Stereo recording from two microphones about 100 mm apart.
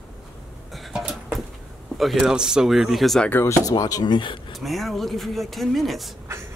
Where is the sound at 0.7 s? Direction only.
Centre (ahead or behind).